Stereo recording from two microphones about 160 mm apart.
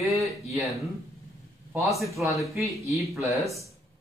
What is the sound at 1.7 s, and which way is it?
Speech, 15° right (ahead or behind).